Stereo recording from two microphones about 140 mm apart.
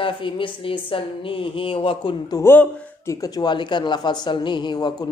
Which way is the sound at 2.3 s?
15° left (ahead or behind).